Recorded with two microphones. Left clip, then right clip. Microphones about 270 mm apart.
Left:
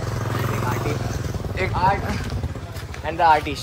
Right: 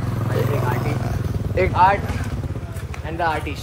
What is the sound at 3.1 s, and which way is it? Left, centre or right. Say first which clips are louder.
Speech: left 6 dB; left.